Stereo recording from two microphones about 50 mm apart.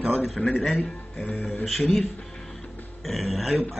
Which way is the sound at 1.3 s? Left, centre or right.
Left.